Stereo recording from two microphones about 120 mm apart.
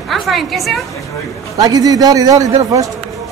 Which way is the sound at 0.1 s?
Centre (ahead or behind).